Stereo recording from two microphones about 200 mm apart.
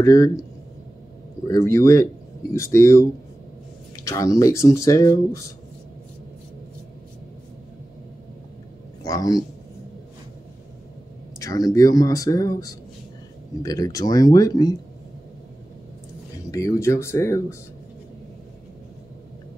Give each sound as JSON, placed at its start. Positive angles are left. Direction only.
{"t": 0.0, "sound": "speech", "side_deg": 15}
{"t": 1.5, "sound": "speech", "side_deg": 15}
{"t": 9.0, "sound": "a man's voice", "side_deg": 20}
{"t": 11.3, "sound": "speech", "side_deg": 15}
{"t": 16.4, "sound": "speech", "side_deg": 15}